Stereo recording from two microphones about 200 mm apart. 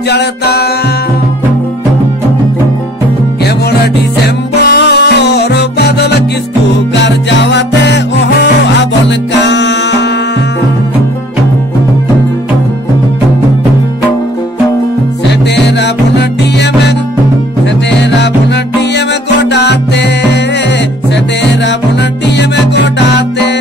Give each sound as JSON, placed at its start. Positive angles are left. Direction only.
{"t": 0.1, "sound": "music", "side_deg": 55}
{"t": 4.6, "sound": "music", "side_deg": 55}
{"t": 15.5, "sound": "music", "side_deg": 60}
{"t": 19.5, "sound": "music", "side_deg": 60}
{"t": 22.4, "sound": "music", "side_deg": 60}